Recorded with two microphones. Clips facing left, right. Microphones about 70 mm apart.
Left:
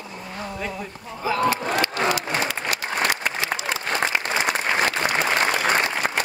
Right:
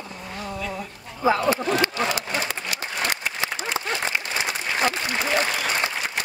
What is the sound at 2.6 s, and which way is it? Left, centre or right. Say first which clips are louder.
Applause: left 4 dB; left.